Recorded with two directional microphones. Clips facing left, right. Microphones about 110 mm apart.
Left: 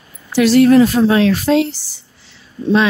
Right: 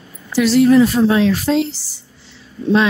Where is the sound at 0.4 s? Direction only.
65° left (ahead or behind).